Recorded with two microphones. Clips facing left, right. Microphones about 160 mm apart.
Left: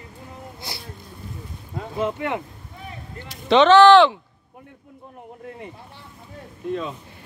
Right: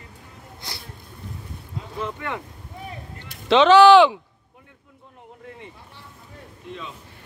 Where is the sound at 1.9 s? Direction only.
25° left (ahead or behind).